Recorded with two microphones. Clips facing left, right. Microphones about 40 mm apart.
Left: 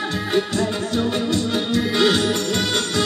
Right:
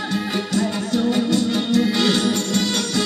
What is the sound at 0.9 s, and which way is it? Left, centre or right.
Music, left.